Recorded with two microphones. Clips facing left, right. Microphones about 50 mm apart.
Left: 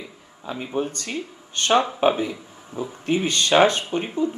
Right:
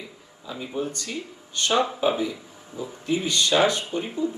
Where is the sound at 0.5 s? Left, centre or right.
Left.